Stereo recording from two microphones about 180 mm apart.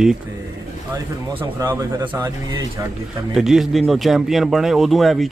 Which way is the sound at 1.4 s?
15° right (ahead or behind).